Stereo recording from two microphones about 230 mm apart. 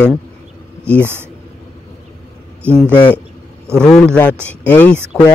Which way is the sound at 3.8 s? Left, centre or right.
Centre.